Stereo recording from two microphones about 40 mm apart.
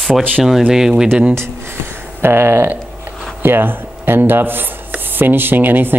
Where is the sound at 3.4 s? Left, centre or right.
Right.